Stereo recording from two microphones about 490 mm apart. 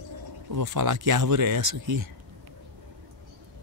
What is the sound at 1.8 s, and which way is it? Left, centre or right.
Speech, right.